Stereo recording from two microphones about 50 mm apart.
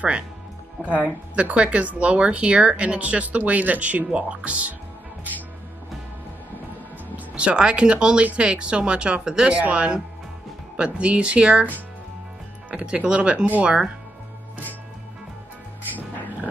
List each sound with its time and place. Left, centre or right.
1.0 s speech: right
7.3 s speech: right
12.7 s speech: right